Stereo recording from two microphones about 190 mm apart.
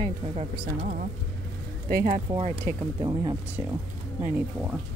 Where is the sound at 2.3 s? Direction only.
20° right (ahead or behind).